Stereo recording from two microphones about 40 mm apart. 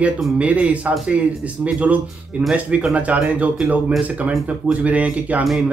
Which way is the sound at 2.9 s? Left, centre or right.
Right.